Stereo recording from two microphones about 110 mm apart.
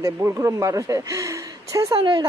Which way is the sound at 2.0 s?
45° right (ahead or behind).